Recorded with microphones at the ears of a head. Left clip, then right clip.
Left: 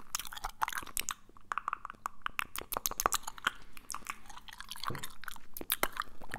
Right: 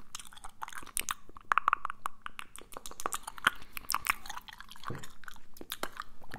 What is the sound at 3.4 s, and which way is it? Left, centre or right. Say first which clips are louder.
Chewing: right 6 dB; right.